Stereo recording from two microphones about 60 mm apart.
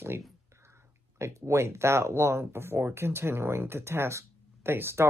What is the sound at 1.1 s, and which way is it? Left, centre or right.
Speech, right.